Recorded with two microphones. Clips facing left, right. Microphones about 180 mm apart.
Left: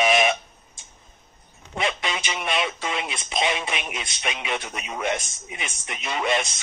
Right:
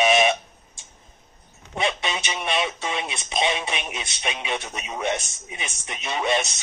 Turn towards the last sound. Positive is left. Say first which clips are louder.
# right 1 dB
turn(degrees=-25)  # may be behind; listen again after turning